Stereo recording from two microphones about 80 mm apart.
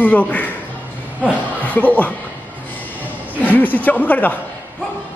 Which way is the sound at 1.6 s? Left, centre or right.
Left.